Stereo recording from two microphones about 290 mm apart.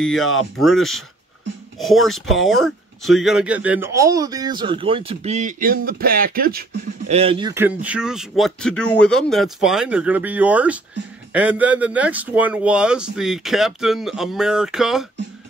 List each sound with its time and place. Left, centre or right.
0.0 s speech: centre; by 6.6 s right
7.1 s speech: centre